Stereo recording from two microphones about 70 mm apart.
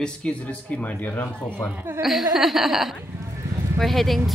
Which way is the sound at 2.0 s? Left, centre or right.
Centre.